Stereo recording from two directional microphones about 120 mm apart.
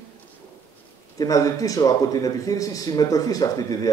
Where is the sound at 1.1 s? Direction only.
30° left (ahead or behind).